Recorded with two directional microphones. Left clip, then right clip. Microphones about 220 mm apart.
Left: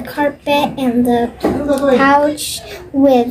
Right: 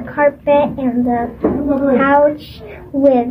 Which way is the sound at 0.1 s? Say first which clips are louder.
Right 3 dB; 50° left (ahead or behind).